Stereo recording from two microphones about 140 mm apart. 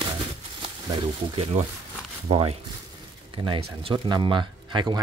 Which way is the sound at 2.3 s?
45° right (ahead or behind).